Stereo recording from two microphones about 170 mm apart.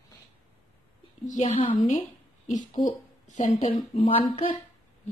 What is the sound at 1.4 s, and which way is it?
Speech, 35° left (ahead or behind).